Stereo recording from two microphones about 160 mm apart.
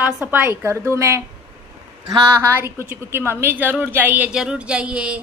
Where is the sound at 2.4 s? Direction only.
15° right (ahead or behind).